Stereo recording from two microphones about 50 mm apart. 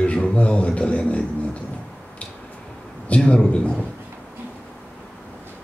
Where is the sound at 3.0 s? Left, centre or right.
Left.